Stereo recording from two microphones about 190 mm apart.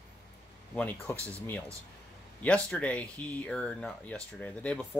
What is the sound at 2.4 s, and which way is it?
Speech, 5° left (ahead or behind).